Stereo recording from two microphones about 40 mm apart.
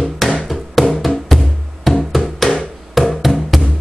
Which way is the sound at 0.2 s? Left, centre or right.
Centre.